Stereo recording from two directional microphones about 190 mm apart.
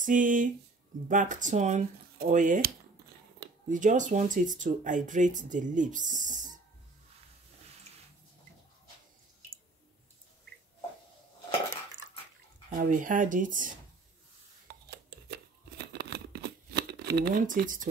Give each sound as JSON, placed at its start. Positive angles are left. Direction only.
{"t": 0.0, "sound": "speech", "side_deg": -45}
{"t": 12.6, "sound": "speech", "side_deg": -45}
{"t": 14.9, "sound": "scissors", "side_deg": -60}